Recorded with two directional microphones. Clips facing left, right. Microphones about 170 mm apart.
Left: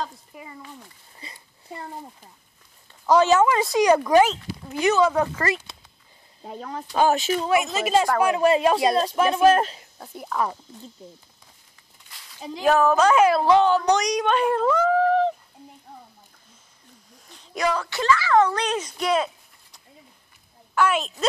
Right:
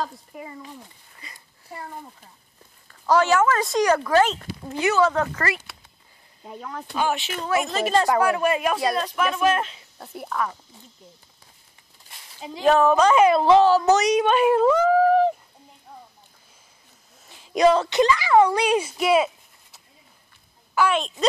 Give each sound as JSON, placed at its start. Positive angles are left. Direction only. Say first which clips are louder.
{"t": 1.2, "sound": "a sound", "louder": "left 3 dB", "side_deg": 30}
{"t": 2.9, "sound": "speech", "louder": "left 2 dB", "side_deg": 20}
{"t": 6.4, "sound": "speech", "louder": "left 2 dB", "side_deg": 40}
{"t": 7.6, "sound": "speech", "louder": "even", "side_deg": 10}
{"t": 8.2, "sound": "speech", "louder": "left 2 dB", "side_deg": 25}
{"t": 9.9, "sound": "speech", "louder": "right 3 dB", "side_deg": 0}
{"t": 12.5, "sound": "speech", "louder": "right 1 dB", "side_deg": 5}
{"t": 17.5, "sound": "speech", "louder": "right 7 dB", "side_deg": -25}